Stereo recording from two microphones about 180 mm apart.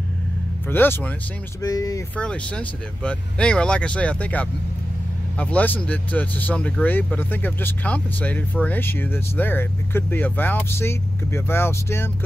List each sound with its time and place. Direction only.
0.7 s speech: 10° left (ahead or behind)
2.1 s speech: 5° left (ahead or behind)